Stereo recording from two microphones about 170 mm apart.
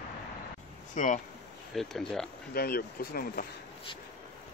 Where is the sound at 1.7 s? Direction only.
5° left (ahead or behind).